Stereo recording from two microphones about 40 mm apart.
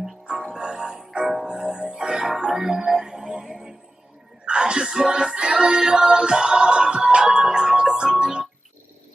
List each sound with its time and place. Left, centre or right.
0.0 s music: centre
2.2 s music: centre